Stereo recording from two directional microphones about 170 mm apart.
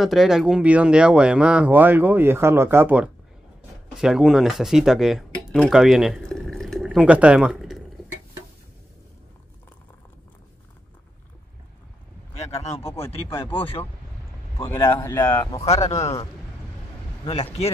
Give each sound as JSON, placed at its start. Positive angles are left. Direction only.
{"t": 0.0, "sound": "speech", "side_deg": 0}
{"t": 12.4, "sound": "speech", "side_deg": 40}
{"t": 15.2, "sound": "speech", "side_deg": 15}
{"t": 15.6, "sound": "speech", "side_deg": 40}